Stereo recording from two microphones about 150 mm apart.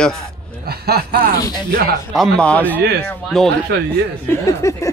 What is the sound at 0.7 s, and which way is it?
Speech, 90° right.